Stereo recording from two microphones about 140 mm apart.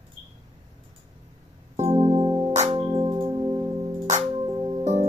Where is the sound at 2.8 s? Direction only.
30° right (ahead or behind).